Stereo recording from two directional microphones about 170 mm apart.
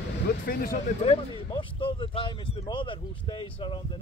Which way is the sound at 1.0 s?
35° left (ahead or behind).